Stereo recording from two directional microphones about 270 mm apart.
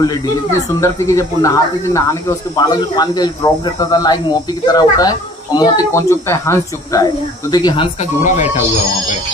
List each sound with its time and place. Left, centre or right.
0.0 s speech: centre; by 8.6 s left